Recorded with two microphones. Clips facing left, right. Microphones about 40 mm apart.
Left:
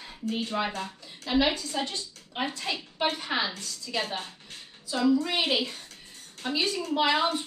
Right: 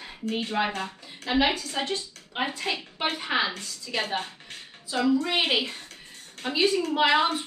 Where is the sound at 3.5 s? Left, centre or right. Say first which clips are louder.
Right 1 dB; right.